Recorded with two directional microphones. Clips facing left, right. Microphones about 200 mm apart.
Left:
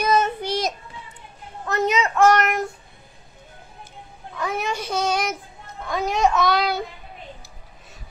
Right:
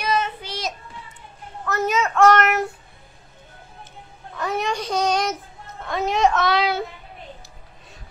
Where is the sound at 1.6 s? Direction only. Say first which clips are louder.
Left 1 dB; 20° left (ahead or behind).